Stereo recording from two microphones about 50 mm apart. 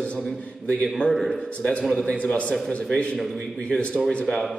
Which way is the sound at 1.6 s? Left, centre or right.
Left.